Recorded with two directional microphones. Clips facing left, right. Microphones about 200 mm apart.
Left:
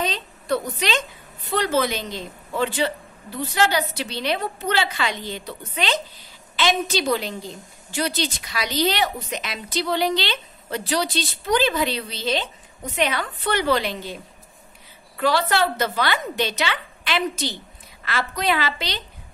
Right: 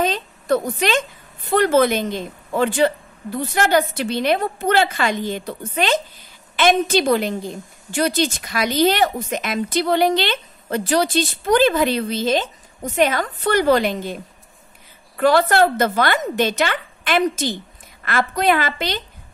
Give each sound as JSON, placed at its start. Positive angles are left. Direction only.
{"t": 0.0, "sound": "a woman's voice", "side_deg": -50}
{"t": 15.1, "sound": "a woman's voice", "side_deg": -50}